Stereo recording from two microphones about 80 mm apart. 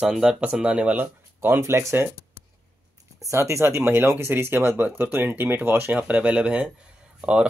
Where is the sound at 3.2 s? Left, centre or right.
Right.